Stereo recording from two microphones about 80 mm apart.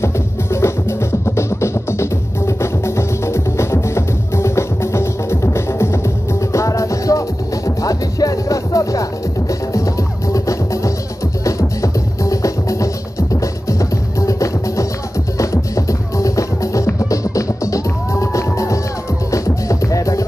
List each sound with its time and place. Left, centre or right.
0.0 s music: left
10.3 s music: left